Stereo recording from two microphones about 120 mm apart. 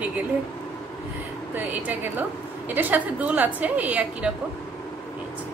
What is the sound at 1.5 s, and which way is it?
A woman's voice, 15° right (ahead or behind).